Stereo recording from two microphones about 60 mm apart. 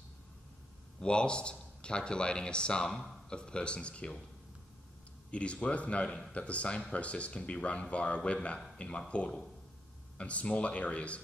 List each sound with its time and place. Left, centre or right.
1.0 s speech: centre
5.3 s speech: centre
10.1 s speech: left